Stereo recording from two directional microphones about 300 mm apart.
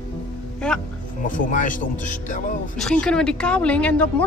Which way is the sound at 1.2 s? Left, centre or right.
Left.